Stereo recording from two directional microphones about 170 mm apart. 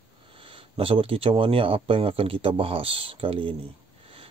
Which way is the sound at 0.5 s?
35° right (ahead or behind).